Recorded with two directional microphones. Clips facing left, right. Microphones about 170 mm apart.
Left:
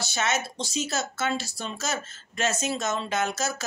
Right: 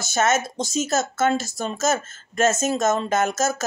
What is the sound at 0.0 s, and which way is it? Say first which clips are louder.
Speech: right 7 dB; 45° right (ahead or behind).